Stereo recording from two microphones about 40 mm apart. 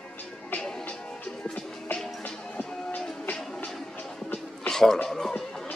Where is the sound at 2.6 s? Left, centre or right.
Centre.